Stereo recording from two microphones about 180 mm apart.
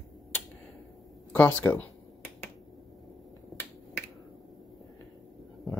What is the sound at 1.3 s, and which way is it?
Speech, 10° left (ahead or behind).